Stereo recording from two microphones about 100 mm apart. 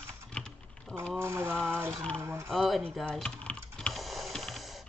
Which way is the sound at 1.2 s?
25° right (ahead or behind).